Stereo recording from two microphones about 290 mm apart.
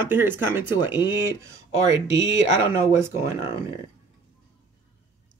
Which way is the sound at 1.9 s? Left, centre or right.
Right.